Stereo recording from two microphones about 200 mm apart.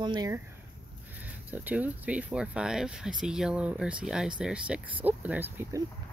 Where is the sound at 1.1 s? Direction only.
10° right (ahead or behind).